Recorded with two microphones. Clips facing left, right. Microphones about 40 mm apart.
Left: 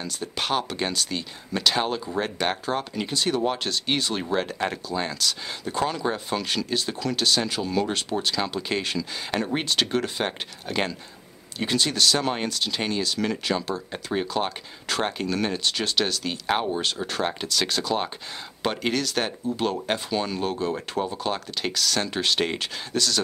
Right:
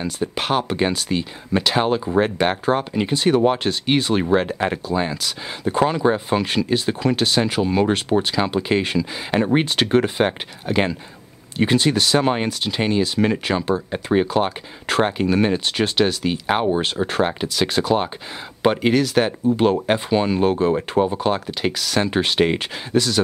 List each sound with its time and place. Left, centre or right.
0.0 s speech: centre
17.2 s speech: centre